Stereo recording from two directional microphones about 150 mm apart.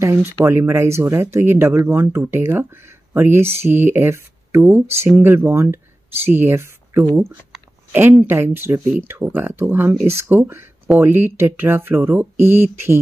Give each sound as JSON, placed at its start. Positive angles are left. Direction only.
{"t": 0.0, "sound": "speech", "side_deg": -20}